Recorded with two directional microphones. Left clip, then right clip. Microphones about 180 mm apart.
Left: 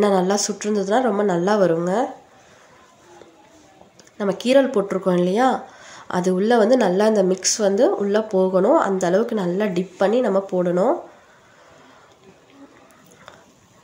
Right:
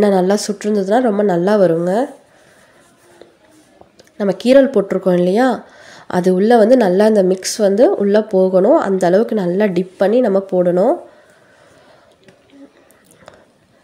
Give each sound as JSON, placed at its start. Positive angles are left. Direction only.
{"t": 0.0, "sound": "speech", "side_deg": -45}
{"t": 4.2, "sound": "speech", "side_deg": -45}